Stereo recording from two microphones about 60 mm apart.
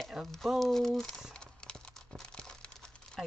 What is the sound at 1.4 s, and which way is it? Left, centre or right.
Crumpling, centre.